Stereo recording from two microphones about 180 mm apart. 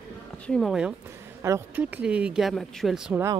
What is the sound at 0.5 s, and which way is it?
Speech, centre (ahead or behind).